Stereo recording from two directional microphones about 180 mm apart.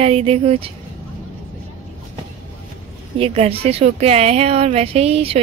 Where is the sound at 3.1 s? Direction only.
35° right (ahead or behind).